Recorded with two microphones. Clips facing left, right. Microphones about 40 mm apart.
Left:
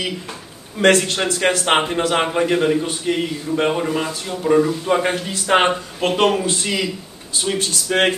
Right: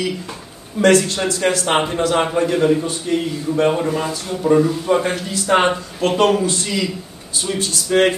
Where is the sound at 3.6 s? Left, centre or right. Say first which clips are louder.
Right 2 dB; centre.